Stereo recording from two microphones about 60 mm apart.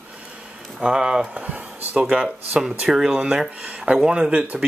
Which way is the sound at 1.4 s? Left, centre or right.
Right.